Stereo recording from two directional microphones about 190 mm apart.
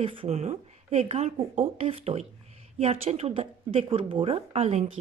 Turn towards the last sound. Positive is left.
turn(degrees=-35)  # may be behind; listen again after turning